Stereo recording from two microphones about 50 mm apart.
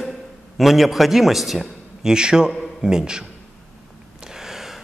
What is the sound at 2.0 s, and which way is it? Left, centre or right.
A man's voice, centre.